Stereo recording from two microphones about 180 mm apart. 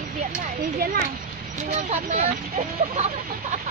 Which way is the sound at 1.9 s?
40° right (ahead or behind).